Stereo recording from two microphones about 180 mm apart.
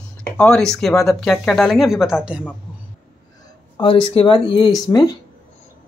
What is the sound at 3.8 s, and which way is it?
Speech, 30° left (ahead or behind).